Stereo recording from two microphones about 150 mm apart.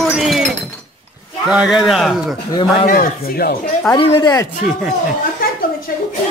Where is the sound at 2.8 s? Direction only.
80° left.